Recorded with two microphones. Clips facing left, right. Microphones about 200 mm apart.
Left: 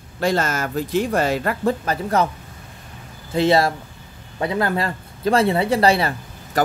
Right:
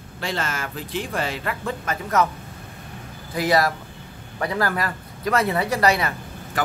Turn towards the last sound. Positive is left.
turn(degrees=30)  # may be behind; listen again after turning